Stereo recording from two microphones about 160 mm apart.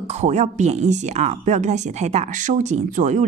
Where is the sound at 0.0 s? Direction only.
45° right (ahead or behind).